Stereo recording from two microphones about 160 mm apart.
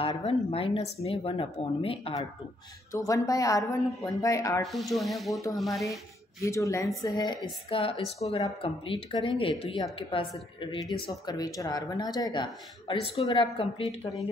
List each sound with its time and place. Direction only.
0.2 s speech: 35° left (ahead or behind)
2.9 s speech: 20° left (ahead or behind)
4.6 s speech: centre (ahead or behind)
6.4 s speech: 20° left (ahead or behind)
7.4 s speech: 35° left (ahead or behind)
10.9 s speech: 30° left (ahead or behind)